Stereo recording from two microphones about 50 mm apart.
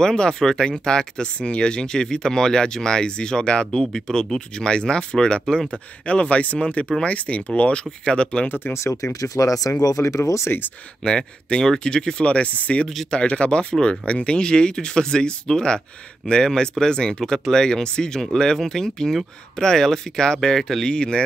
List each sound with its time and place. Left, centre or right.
0.0 s speech: centre
8.5 s speech: left
8.7 s speech: left
11.1 s speech: centre
12.8 s speech: centre
13.1 s speech: left